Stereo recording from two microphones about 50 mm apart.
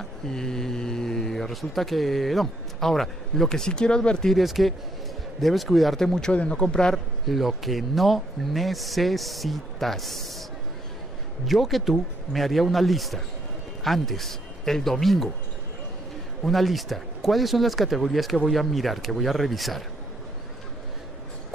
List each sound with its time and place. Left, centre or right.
0.0 s speech: centre
4.3 s speech: centre
6.3 s a man's voice: left
7.2 s speech: centre
11.4 s speech: centre
16.4 s speech: centre